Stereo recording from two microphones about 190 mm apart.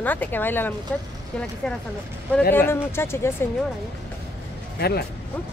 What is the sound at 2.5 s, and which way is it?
Speech, 10° left (ahead or behind).